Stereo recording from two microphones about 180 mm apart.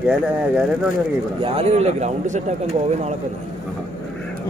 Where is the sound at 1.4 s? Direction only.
35° right (ahead or behind).